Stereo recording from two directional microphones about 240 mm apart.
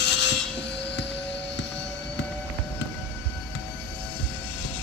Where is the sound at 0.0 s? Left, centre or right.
Left.